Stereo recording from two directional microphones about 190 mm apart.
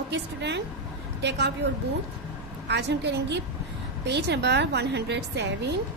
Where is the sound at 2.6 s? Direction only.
65° right (ahead or behind).